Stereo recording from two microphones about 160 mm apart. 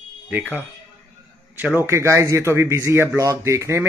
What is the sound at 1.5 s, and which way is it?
Speech, 10° right (ahead or behind).